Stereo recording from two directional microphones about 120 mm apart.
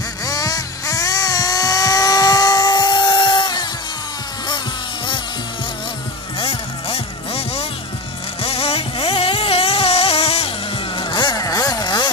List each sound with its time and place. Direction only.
0.2 s music: 30° left (ahead or behind)
6.4 s music: 55° left (ahead or behind)
11.0 s vehicle: 40° left (ahead or behind)